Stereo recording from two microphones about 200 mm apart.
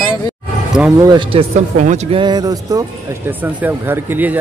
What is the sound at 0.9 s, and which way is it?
Speech, 20° right (ahead or behind).